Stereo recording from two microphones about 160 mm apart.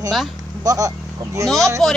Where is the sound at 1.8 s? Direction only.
Centre (ahead or behind).